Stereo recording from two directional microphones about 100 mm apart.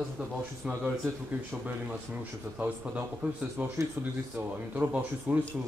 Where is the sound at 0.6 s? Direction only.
10° right (ahead or behind).